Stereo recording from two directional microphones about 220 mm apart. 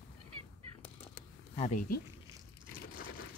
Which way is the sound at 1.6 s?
35° left (ahead or behind).